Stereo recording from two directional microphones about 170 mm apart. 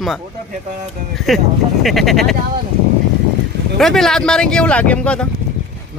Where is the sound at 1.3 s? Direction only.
Centre (ahead or behind).